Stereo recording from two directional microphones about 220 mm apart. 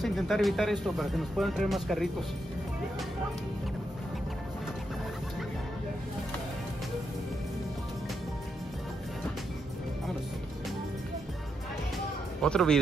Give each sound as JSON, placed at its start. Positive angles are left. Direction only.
{"t": 0.0, "sound": "speech", "side_deg": 0}
{"t": 12.4, "sound": "speech", "side_deg": 5}